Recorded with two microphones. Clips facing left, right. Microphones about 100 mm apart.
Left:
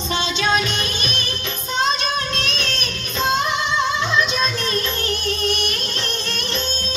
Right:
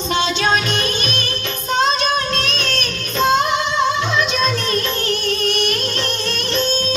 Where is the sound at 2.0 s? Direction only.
40° right (ahead or behind).